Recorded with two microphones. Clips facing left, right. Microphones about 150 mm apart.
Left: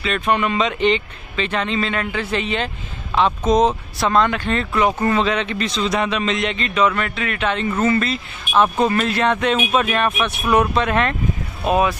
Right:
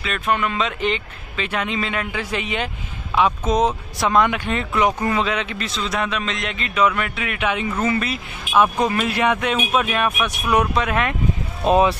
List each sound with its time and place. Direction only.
0.0 s a man's voice: centre (ahead or behind)
11.6 s speech: 30° right (ahead or behind)